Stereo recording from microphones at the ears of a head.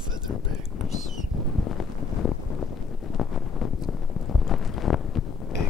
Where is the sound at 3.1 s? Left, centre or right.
Left.